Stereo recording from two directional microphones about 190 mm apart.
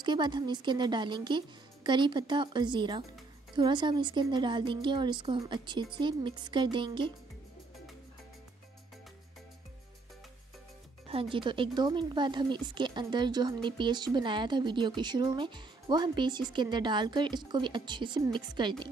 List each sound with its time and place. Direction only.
0.0 s speech: 25° right (ahead or behind)
11.1 s speech: 30° right (ahead or behind)